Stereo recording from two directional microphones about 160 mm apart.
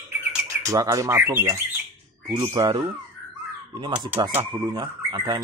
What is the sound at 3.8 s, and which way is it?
Speech, 30° right (ahead or behind).